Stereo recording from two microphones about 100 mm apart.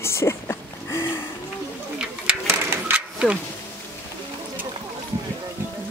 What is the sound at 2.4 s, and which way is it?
Printer, 20° right (ahead or behind).